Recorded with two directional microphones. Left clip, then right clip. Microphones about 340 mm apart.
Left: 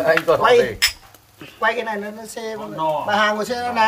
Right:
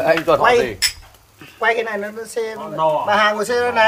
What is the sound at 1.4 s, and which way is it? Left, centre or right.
A woman's voice, centre.